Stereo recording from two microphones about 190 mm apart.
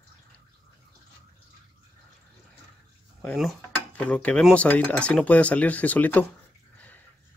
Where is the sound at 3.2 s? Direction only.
5° left (ahead or behind).